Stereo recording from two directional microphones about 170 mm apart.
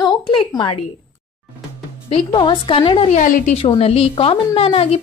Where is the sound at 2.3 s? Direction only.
30° left (ahead or behind).